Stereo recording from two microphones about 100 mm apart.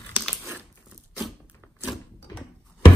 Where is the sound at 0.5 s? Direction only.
20° right (ahead or behind).